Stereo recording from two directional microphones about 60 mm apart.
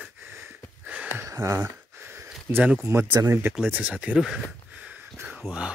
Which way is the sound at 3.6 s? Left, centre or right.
Right.